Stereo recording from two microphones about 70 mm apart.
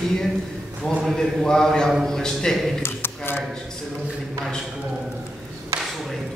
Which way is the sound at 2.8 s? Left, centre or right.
Left.